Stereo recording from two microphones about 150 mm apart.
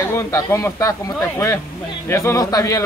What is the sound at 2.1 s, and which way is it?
Speech, 20° left (ahead or behind).